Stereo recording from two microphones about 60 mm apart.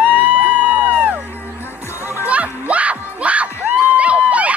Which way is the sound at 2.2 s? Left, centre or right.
Right.